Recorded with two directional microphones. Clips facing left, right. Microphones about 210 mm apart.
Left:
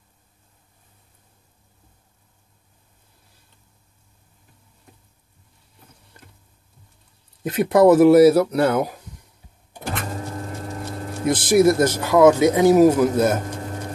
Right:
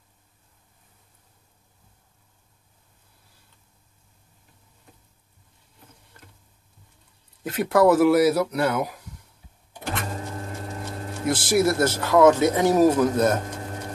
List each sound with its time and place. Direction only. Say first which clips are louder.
7.4 s speech: left 4 dB; 20° left (ahead or behind)
11.2 s speech: left 5 dB; 20° left (ahead or behind)